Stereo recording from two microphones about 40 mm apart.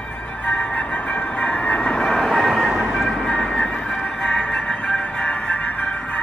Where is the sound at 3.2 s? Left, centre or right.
Centre.